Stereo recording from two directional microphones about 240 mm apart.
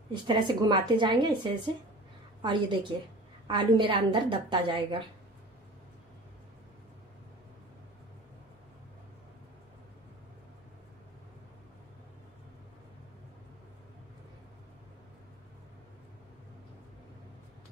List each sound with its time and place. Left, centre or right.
0.1 s a woman's voice: centre